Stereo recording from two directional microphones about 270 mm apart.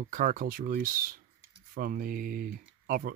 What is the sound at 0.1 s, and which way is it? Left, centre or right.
Speech, right.